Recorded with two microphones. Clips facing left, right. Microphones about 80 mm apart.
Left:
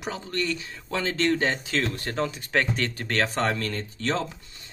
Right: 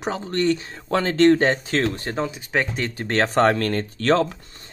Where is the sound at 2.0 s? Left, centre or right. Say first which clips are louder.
Right 2 dB; centre.